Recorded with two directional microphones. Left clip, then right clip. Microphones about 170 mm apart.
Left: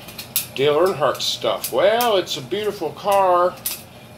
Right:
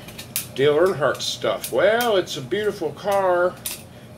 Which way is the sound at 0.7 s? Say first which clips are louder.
Left 1 dB; 15° left (ahead or behind).